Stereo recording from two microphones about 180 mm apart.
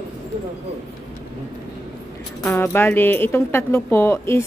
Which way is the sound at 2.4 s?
10° left (ahead or behind).